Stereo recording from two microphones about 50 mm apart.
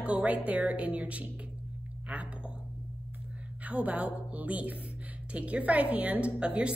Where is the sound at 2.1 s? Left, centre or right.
Right.